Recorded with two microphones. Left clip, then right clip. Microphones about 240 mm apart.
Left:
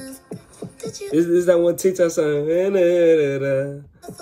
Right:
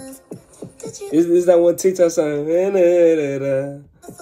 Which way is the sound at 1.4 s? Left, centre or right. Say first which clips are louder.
Right 3 dB; centre.